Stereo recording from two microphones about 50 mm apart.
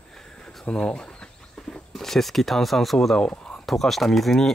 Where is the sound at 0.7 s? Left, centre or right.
Centre.